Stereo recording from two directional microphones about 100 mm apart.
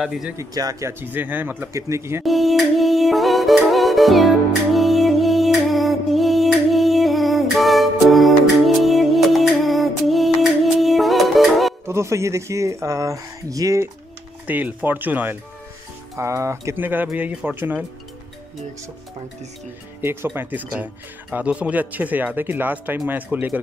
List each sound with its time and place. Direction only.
0.0 s speech: 5° right (ahead or behind)
0.4 s speech: 35° right (ahead or behind)
1.0 s speech: 20° right (ahead or behind)
1.7 s speech: 30° right (ahead or behind)
2.2 s music: centre (ahead or behind)
11.8 s speech: 30° right (ahead or behind)
14.4 s speech: 15° right (ahead or behind)
16.2 s speech: 30° right (ahead or behind)
20.0 s speech: 25° right (ahead or behind)